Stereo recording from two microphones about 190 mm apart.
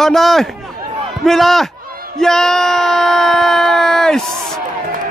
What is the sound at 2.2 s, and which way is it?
Speech, centre (ahead or behind).